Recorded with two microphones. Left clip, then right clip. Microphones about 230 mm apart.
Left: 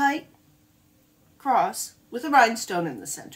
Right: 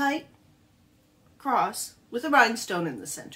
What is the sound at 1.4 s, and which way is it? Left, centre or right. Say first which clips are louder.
A woman's voice: left 3 dB; centre.